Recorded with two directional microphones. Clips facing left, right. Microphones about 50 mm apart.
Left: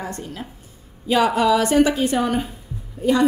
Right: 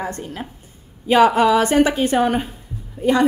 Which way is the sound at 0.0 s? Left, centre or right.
Right.